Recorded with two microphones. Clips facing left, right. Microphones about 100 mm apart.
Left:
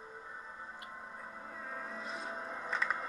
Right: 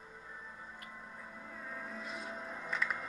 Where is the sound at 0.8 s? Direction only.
35° left (ahead or behind).